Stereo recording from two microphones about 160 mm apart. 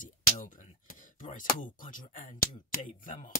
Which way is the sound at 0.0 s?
60° left (ahead or behind).